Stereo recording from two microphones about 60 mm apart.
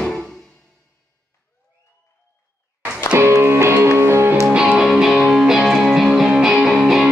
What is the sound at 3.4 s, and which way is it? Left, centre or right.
Music, right.